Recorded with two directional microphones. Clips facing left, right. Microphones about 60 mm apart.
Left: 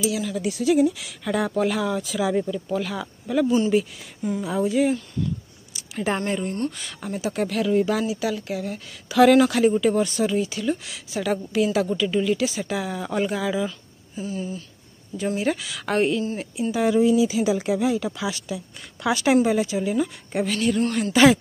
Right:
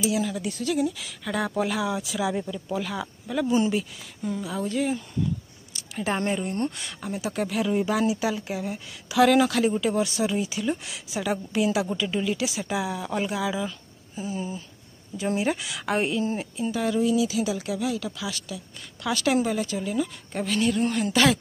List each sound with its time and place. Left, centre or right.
0.3 s speech: centre
3.4 s speech: right
3.7 s a woman's voice: centre
9.1 s a woman's voice: centre
14.1 s a woman's voice: centre
16.7 s a woman's voice: centre
20.5 s speech: centre